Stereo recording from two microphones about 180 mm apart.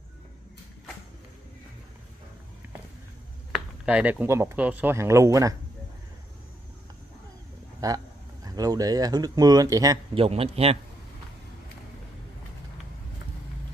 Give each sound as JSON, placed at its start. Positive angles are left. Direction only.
{"t": 3.5, "sound": "speech", "side_deg": -5}
{"t": 7.8, "sound": "speech", "side_deg": -20}
{"t": 10.1, "sound": "a man's voice", "side_deg": -30}